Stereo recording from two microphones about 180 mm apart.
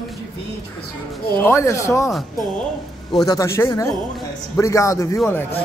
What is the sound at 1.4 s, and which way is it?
Speech, 15° left (ahead or behind).